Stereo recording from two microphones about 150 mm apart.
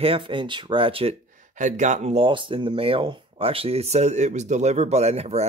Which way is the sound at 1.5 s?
55° right (ahead or behind).